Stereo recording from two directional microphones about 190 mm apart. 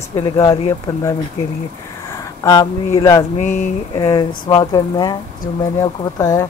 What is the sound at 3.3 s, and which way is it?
Speech, 40° left (ahead or behind).